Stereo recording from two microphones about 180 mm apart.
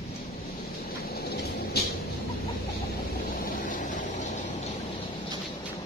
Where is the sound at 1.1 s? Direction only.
60° left (ahead or behind).